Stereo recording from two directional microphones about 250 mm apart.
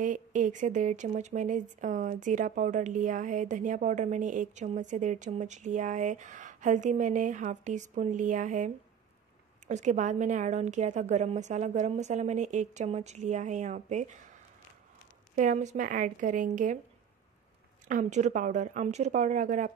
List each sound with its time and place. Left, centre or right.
0.0 s speech: right
15.3 s speech: right
17.8 s speech: right